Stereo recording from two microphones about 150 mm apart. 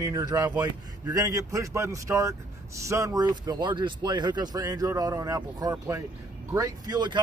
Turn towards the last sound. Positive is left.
turn(degrees=-30)  # may be behind; listen again after turning